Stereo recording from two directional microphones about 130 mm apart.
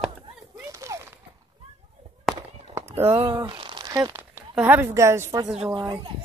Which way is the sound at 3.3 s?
35° right (ahead or behind).